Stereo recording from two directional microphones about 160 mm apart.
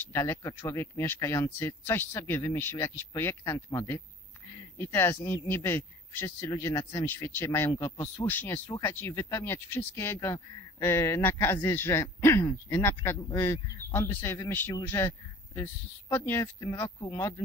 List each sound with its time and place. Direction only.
0.0 s speech: 15° left (ahead or behind)